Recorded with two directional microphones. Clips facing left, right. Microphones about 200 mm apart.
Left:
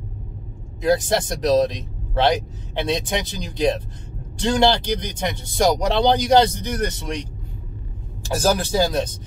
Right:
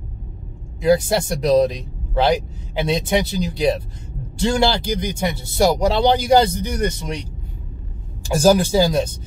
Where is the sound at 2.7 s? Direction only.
10° right (ahead or behind).